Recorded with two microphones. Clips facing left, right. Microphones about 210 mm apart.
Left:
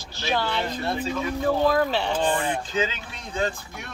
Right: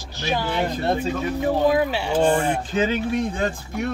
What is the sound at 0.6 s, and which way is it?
Speech, 45° right (ahead or behind).